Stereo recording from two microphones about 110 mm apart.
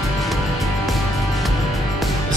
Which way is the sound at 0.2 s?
Centre (ahead or behind).